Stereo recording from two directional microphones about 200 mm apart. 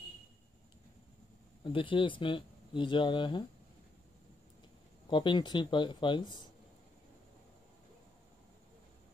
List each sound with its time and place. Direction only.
1.6 s speech: 25° left (ahead or behind)
5.1 s speech: 25° left (ahead or behind)